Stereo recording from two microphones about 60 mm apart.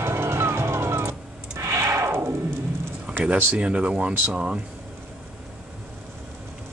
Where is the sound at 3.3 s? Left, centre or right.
Right.